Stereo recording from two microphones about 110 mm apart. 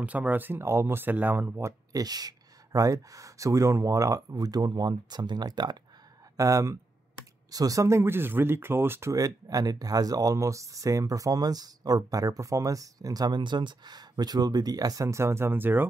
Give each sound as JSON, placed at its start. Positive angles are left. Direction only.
{"t": 0.0, "sound": "speech", "side_deg": -15}
{"t": 1.9, "sound": "speech", "side_deg": -35}
{"t": 6.3, "sound": "speech", "side_deg": -30}
{"t": 9.2, "sound": "speech", "side_deg": -35}